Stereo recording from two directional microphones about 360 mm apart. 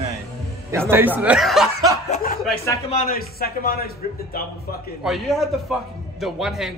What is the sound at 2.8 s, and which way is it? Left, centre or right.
Speech, left.